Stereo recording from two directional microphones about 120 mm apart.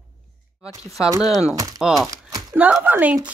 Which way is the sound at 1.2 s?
Centre (ahead or behind).